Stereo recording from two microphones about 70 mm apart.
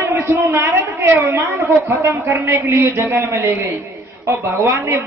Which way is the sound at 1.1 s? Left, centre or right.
Right.